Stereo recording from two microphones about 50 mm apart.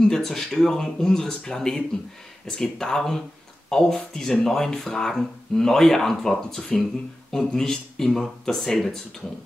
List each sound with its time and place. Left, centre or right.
0.0 s speech: centre